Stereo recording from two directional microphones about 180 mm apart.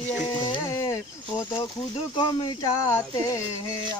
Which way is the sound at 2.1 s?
25° left (ahead or behind).